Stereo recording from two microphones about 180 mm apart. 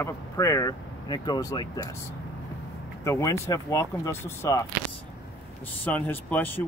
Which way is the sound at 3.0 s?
15° left (ahead or behind).